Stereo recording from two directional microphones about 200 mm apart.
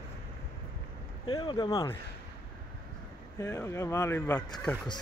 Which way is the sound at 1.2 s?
25° left (ahead or behind).